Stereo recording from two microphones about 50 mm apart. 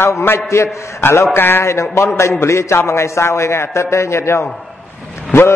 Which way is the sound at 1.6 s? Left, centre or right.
Left.